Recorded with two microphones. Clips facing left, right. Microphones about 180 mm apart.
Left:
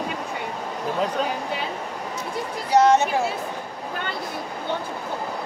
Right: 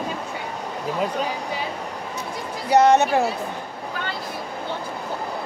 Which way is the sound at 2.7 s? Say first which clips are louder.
Right 1 dB; 65° right (ahead or behind).